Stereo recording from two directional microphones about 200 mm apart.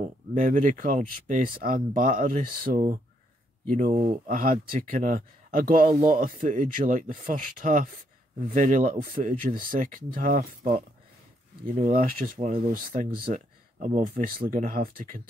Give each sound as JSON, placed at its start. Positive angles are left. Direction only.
{"t": 0.0, "sound": "speech", "side_deg": -40}
{"t": 11.8, "sound": "speech", "side_deg": -45}